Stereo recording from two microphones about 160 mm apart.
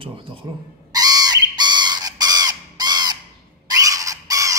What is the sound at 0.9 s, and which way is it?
Bird, 25° right (ahead or behind).